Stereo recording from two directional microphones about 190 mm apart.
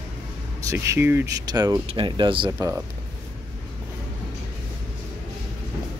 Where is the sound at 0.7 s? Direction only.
15° right (ahead or behind).